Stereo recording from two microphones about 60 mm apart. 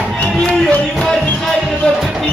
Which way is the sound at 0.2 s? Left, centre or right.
Left.